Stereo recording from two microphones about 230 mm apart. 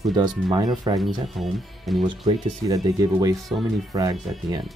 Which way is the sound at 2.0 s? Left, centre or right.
Centre.